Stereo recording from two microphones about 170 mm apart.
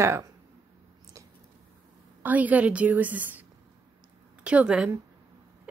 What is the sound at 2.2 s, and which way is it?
Speech, 10° right (ahead or behind).